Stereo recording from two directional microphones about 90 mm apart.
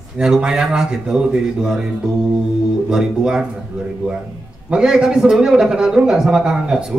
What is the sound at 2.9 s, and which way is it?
Speech, 5° right (ahead or behind).